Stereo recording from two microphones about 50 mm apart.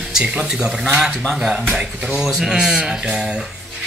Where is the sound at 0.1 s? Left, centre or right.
Centre.